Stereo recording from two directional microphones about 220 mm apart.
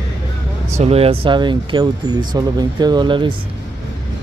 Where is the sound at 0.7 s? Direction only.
25° right (ahead or behind).